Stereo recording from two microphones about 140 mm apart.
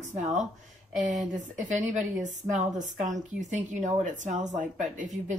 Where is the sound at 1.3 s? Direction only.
60° right (ahead or behind).